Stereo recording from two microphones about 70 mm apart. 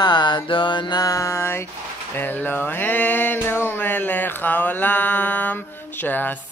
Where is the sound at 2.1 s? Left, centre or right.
Left.